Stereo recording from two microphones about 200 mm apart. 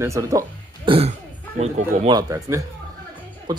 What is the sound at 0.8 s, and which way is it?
Speech, 30° right (ahead or behind).